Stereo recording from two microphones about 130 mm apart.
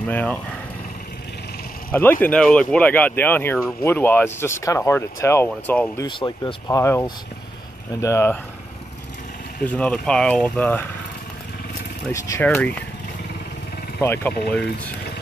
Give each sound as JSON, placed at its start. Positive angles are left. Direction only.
{"t": 0.0, "sound": "speech", "side_deg": 10}
{"t": 1.9, "sound": "speech", "side_deg": 15}
{"t": 6.0, "sound": "speech", "side_deg": 35}
{"t": 9.6, "sound": "speech", "side_deg": 10}
{"t": 12.1, "sound": "speech", "side_deg": 20}
{"t": 14.0, "sound": "speech", "side_deg": 15}